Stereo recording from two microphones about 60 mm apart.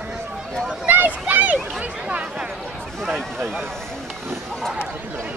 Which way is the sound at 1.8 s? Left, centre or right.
Centre.